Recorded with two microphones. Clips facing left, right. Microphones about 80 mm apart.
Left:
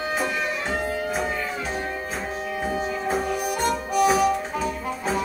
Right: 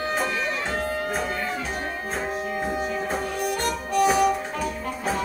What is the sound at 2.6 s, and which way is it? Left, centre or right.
Music, centre.